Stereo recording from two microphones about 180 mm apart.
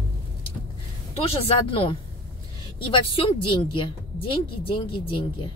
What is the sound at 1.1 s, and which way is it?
Speech, 35° left (ahead or behind).